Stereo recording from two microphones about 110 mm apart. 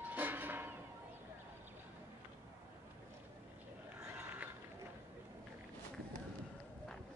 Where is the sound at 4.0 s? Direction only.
15° right (ahead or behind).